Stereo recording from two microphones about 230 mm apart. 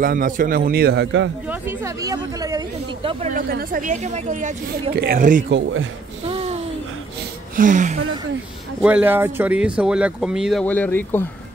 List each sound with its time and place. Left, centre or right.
0.0 s speech: right
1.5 s speech: centre; by 5.4 s right
5.5 s a man's voice: right
6.2 s a sound: right
7.5 s speech: right
8.8 s speech: centre